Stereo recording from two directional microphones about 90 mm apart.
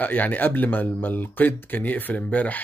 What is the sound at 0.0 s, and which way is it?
Speech, 20° left (ahead or behind).